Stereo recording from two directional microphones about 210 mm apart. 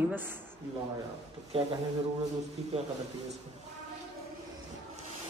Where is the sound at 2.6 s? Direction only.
30° right (ahead or behind).